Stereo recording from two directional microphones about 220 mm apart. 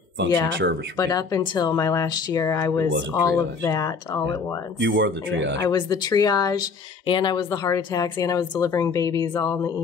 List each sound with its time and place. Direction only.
0.9 s speech: 15° left (ahead or behind)
4.7 s speech: 55° right (ahead or behind)
5.7 s speech: 20° left (ahead or behind)